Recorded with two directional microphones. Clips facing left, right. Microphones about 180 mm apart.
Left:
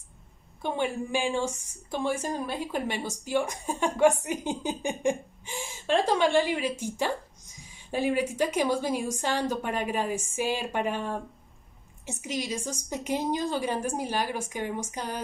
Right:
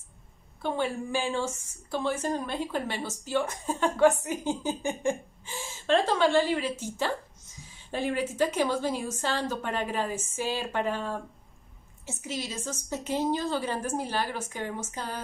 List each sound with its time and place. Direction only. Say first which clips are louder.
0.6 s a woman's voice: even; 15° left (ahead or behind)